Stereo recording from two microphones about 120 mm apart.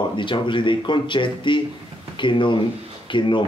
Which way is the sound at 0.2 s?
40° left (ahead or behind).